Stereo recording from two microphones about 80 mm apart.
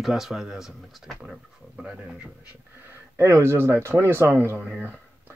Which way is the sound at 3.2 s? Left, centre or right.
Right.